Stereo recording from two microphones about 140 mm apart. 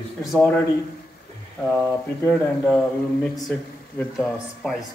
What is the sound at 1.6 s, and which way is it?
Speech, 15° left (ahead or behind).